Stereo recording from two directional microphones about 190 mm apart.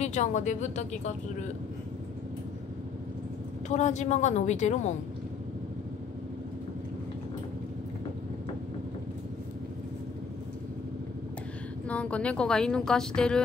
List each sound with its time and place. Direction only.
0.0 s a woman's voice: 40° left (ahead or behind)
3.6 s a woman's voice: 35° left (ahead or behind)
11.9 s a woman's voice: 5° left (ahead or behind)